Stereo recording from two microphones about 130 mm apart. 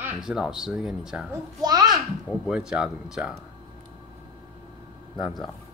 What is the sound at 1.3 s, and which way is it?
Speech, 30° right (ahead or behind).